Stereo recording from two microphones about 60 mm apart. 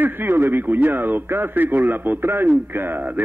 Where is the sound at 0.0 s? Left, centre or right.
Right.